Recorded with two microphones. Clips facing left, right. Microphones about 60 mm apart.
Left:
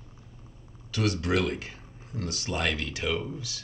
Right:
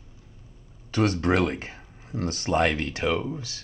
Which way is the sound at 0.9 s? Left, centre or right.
Right.